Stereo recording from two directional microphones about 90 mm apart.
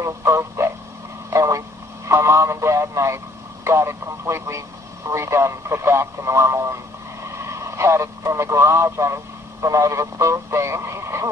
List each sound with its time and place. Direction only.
0.0 s radio: 30° right (ahead or behind)
1.3 s vehicle: 35° right (ahead or behind)
2.0 s radio: 30° right (ahead or behind)
3.6 s speech: 30° right (ahead or behind)